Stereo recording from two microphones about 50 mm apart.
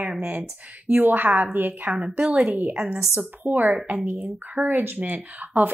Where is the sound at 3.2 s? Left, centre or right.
Right.